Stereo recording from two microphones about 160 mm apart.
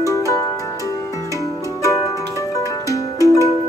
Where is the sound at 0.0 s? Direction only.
20° left (ahead or behind).